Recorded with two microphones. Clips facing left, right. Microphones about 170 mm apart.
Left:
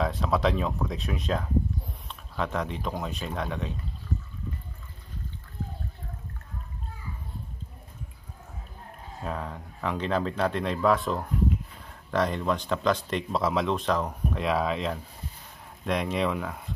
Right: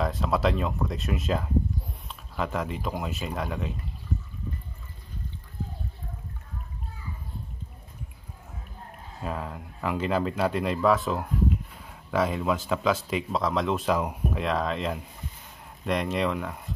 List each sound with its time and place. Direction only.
0.0 s speech: centre (ahead or behind)
9.2 s speech: 5° right (ahead or behind)